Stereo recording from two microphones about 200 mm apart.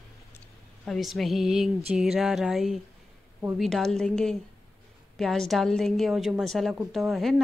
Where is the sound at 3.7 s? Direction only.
Centre (ahead or behind).